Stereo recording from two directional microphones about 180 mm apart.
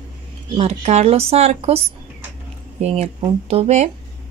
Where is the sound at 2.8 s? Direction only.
35° right (ahead or behind).